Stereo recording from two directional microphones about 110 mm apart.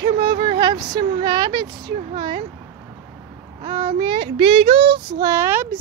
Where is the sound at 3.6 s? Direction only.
65° right (ahead or behind).